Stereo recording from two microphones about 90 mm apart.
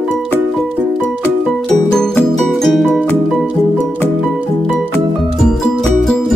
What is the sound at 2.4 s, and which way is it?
Music, centre (ahead or behind).